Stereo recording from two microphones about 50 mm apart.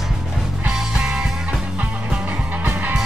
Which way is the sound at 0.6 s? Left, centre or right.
Centre.